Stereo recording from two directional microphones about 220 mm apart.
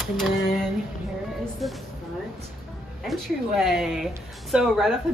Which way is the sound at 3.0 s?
Centre (ahead or behind).